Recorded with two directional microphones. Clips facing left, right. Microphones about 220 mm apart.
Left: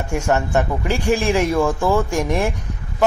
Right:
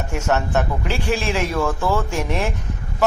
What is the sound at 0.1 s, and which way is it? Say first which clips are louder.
A man's voice: left 2 dB; 10° left (ahead or behind).